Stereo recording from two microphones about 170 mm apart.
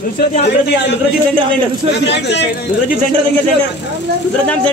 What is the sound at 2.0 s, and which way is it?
Speech, 90° left.